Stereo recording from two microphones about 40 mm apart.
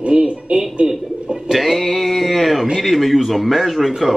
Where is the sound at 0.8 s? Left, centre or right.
Centre.